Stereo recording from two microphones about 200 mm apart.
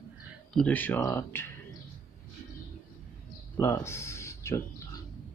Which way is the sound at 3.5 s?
10° left (ahead or behind).